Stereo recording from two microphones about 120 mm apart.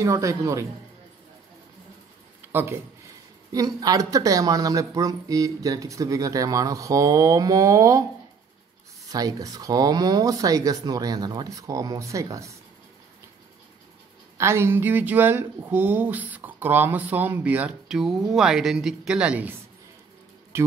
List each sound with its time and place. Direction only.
0.0 s speech: 25° right (ahead or behind)
2.5 s speech: 20° right (ahead or behind)
9.1 s speech: 30° right (ahead or behind)
14.4 s speech: 20° right (ahead or behind)
20.5 s insect: 20° right (ahead or behind)